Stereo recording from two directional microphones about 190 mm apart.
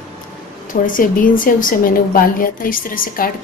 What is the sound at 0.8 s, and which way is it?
A woman's voice, 45° left (ahead or behind).